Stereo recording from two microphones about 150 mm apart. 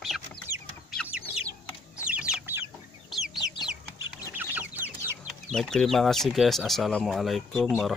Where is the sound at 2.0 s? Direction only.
5° right (ahead or behind).